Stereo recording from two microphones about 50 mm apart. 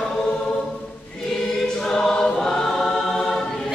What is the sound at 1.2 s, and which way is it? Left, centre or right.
Choir, centre.